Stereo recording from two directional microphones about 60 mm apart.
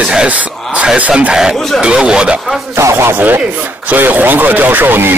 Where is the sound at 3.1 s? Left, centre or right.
Right.